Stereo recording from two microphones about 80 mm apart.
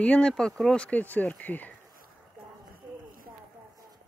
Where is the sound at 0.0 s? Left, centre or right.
Centre.